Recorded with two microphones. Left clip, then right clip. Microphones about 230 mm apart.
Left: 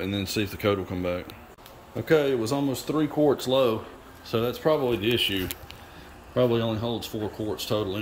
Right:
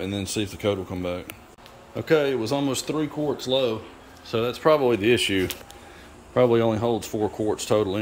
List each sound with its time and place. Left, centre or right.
0.0 s speech: centre
3.0 s speech: centre